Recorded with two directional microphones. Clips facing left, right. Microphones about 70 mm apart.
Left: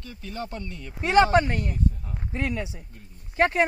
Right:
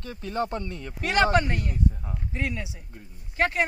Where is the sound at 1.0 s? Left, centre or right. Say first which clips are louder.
Left 3 dB; left.